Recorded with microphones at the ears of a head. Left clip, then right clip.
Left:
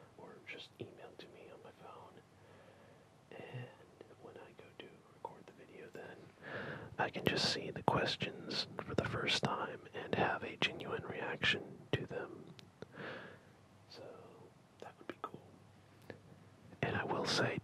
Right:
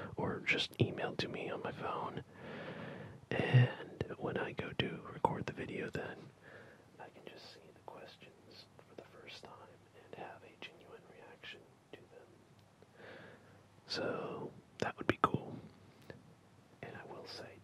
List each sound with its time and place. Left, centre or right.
0.0 s whispering: right
6.4 s whispering: left
13.8 s whispering: right
16.8 s whispering: left